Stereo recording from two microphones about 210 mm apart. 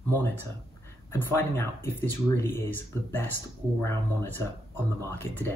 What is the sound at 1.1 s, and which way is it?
Speech, 10° left (ahead or behind).